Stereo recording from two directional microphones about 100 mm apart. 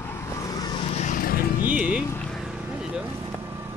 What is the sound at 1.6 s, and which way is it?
Speech, 15° right (ahead or behind).